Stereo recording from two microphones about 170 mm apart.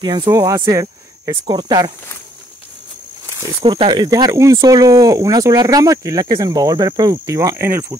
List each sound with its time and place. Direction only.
0.0 s speech: 25° right (ahead or behind)
3.6 s speech: 30° right (ahead or behind)